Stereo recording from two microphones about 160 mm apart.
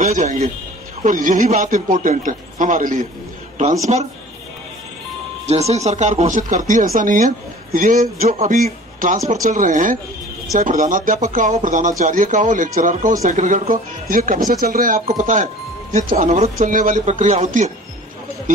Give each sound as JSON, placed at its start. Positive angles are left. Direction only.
{"t": 0.0, "sound": "speech", "side_deg": -50}
{"t": 3.9, "sound": "speech", "side_deg": -45}
{"t": 5.5, "sound": "speech", "side_deg": -40}